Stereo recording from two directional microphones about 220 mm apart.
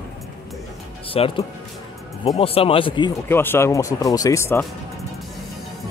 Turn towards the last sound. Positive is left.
turn(degrees=10)  # may be behind; listen again after turning